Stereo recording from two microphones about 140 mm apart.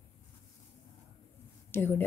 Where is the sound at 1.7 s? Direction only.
15° left (ahead or behind).